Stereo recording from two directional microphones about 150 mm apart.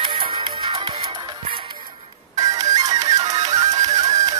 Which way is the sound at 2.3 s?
25° right (ahead or behind).